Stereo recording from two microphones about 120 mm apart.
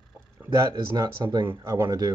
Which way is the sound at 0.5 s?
30° right (ahead or behind).